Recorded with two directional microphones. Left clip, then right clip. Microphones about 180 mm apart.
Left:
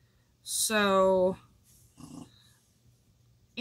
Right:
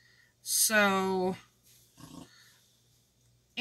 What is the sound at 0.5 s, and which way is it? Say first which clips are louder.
Speech: left 1 dB; 20° right (ahead or behind).